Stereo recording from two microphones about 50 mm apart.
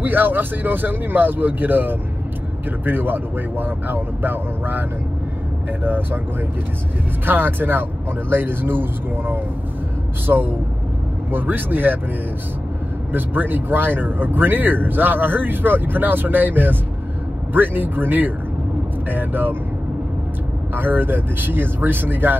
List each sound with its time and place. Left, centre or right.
0.0 s speech: right
7.2 s speech: right
13.1 s speech: right
20.7 s speech: right